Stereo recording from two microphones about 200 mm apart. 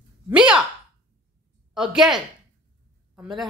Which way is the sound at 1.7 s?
5° right (ahead or behind).